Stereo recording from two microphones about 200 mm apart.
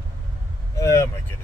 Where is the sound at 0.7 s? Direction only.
15° left (ahead or behind).